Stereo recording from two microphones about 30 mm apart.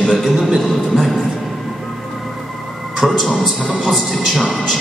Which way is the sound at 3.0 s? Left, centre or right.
Centre.